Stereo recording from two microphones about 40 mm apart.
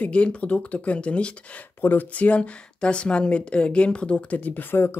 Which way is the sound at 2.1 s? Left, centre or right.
Left.